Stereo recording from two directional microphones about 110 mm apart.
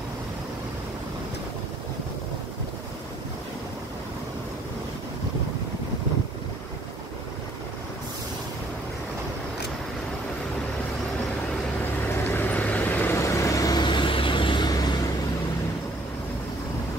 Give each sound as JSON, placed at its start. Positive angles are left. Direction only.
{"t": 12.3, "sound": "vehicle", "side_deg": 15}